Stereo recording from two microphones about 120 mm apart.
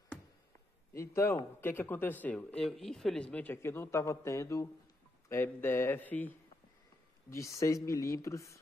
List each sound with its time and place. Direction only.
0.9 s speech: 20° left (ahead or behind)
7.2 s speech: 25° left (ahead or behind)